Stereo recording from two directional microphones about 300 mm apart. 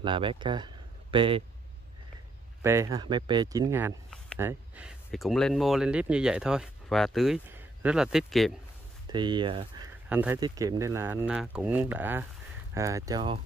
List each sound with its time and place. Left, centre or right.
0.0 s speech: centre
2.6 s speech: centre
9.1 s speech: centre
10.0 s speech: centre